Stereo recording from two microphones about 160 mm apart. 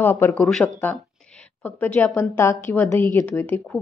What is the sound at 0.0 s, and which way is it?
A woman's voice, 10° left (ahead or behind).